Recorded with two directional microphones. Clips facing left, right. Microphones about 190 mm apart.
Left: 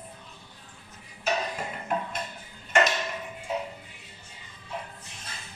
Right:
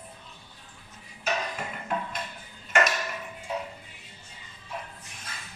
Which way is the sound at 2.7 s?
25° left (ahead or behind).